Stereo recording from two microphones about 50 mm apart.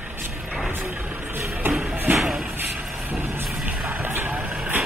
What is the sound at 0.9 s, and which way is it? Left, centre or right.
Vehicle, right.